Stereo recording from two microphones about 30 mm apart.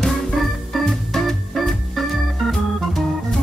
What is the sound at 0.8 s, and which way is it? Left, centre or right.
Organ, centre.